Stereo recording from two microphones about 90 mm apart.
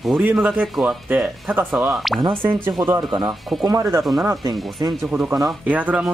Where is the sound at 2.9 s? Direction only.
50° right (ahead or behind).